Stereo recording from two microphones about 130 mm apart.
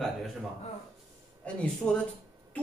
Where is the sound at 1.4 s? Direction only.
5° left (ahead or behind).